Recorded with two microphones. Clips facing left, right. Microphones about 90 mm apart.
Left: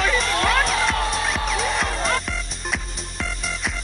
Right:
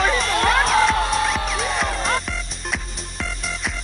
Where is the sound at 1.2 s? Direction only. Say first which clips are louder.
Right 1 dB; centre (ahead or behind).